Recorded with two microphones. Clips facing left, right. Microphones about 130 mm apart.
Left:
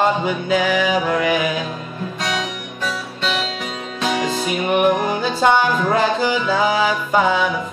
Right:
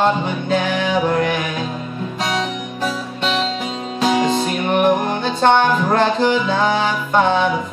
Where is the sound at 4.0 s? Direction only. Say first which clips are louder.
Right 4 dB; 30° right (ahead or behind).